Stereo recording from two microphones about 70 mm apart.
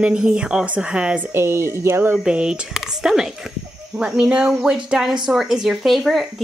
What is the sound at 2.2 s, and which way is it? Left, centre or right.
A woman's voice, centre.